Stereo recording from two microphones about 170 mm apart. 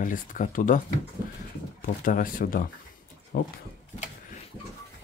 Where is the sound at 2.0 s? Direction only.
55° left (ahead or behind).